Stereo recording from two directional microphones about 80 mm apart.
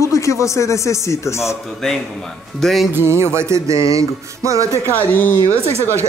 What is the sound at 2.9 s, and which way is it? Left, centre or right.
Music, right.